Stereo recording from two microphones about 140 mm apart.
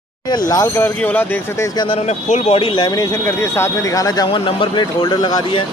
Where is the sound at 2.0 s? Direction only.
50° left (ahead or behind).